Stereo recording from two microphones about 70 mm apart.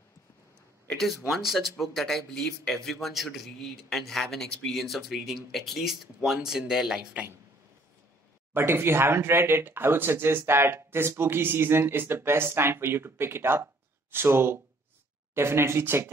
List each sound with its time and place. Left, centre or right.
0.9 s speech: centre
8.5 s speech: right